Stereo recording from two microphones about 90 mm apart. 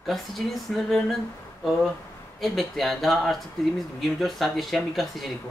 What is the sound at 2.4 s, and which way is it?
Speech, centre (ahead or behind).